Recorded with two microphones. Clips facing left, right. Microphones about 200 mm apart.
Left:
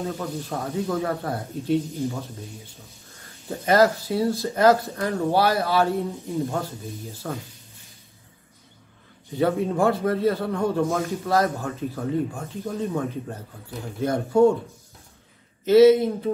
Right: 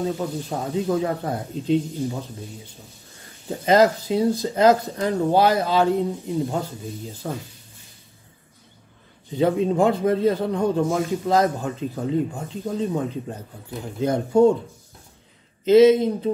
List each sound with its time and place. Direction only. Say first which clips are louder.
0.2 s speech: right 2 dB; 15° right (ahead or behind)
3.4 s speech: right 2 dB; 15° right (ahead or behind)
9.4 s speech: right 2 dB; 20° right (ahead or behind)
15.6 s speech: right 1 dB; 20° right (ahead or behind)